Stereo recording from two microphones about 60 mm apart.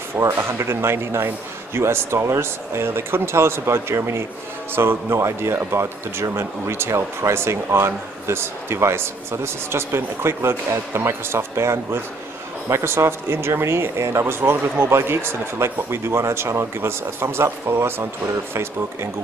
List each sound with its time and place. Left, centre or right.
0.4 s speech: right
14.2 s speech: right